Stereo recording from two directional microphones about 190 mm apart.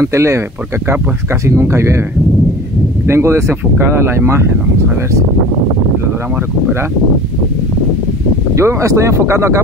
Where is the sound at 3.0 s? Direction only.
15° right (ahead or behind).